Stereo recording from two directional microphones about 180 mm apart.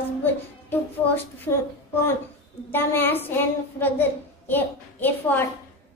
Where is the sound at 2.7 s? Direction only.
10° left (ahead or behind).